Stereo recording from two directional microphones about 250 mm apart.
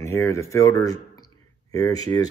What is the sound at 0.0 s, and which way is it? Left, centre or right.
Speech, centre.